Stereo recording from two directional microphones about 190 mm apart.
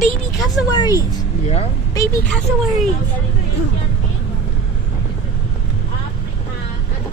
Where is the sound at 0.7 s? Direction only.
20° left (ahead or behind).